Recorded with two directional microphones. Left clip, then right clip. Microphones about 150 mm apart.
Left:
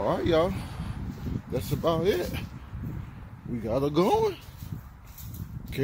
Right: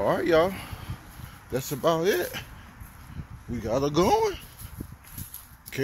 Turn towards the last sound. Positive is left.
turn(degrees=0)  # may be behind; listen again after turning